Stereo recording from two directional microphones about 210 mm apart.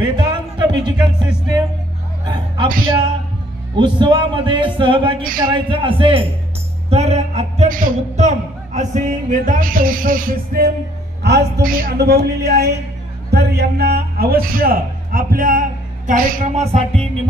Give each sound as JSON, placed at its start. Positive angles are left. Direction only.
{"t": 0.6, "sound": "music", "side_deg": -20}
{"t": 2.2, "sound": "a man's voice", "side_deg": -20}
{"t": 3.7, "sound": "speech", "side_deg": -20}
{"t": 6.9, "sound": "music", "side_deg": -30}
{"t": 8.2, "sound": "a man's voice", "side_deg": -35}